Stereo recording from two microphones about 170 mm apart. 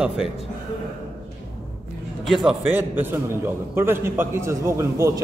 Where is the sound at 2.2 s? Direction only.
Centre (ahead or behind).